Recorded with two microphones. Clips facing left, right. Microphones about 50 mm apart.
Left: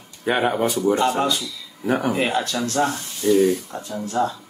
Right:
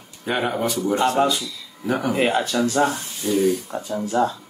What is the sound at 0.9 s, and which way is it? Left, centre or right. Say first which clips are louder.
Speech: right 1 dB; centre.